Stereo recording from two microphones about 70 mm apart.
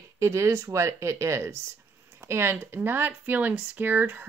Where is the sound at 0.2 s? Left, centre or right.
Right.